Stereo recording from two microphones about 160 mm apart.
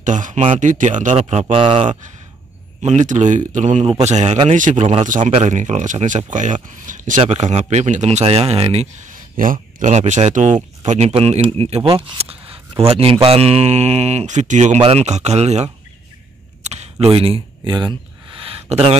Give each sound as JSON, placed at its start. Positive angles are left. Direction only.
{"t": 0.0, "sound": "speech", "side_deg": -50}
{"t": 1.8, "sound": "speech", "side_deg": -50}
{"t": 9.0, "sound": "speech", "side_deg": -60}
{"t": 18.4, "sound": "a sound", "side_deg": -35}